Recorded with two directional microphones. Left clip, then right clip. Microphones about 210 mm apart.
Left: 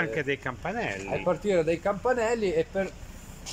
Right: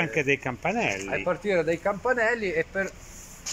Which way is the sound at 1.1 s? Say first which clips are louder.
Even; 5° left (ahead or behind).